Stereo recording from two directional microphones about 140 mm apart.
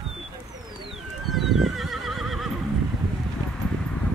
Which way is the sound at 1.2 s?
Centre (ahead or behind).